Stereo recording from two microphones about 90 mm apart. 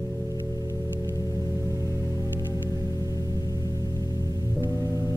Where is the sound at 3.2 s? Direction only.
40° left (ahead or behind).